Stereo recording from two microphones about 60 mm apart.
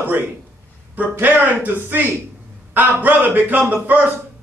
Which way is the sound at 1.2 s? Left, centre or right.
Right.